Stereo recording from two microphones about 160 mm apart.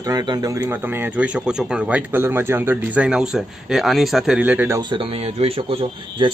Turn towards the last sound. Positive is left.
turn(degrees=-35)  # may be behind; listen again after turning